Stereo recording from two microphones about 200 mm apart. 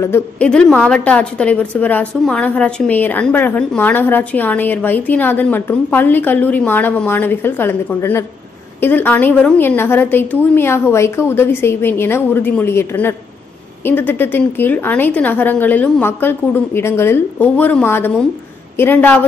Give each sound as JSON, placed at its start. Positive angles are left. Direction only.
{"t": 0.0, "sound": "a woman's voice", "side_deg": 10}